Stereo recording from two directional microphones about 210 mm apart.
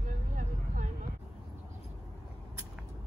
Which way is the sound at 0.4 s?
35° right (ahead or behind).